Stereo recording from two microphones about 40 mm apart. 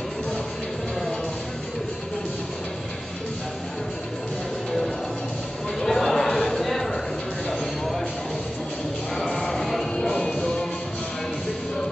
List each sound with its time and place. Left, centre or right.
5.8 s a sound: centre
9.3 s music: centre
10.1 s music: centre